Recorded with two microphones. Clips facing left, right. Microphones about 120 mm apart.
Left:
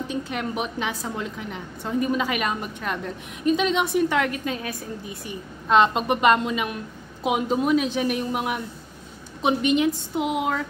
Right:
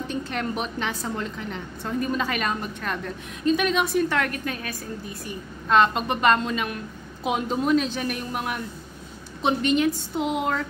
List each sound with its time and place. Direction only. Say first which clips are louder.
0.1 s a woman's voice: right 2 dB; 10° left (ahead or behind)